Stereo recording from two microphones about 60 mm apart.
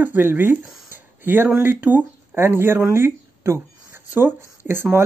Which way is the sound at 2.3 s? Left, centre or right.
Right.